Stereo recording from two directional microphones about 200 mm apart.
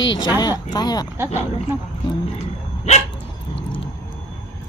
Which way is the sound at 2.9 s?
35° left (ahead or behind).